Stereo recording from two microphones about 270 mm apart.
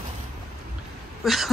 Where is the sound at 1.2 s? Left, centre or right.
Centre.